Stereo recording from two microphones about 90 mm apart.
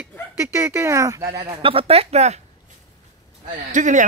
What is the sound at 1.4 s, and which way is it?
Speech, 90° right.